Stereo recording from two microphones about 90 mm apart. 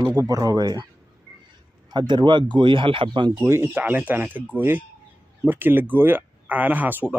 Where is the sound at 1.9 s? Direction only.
60° right (ahead or behind).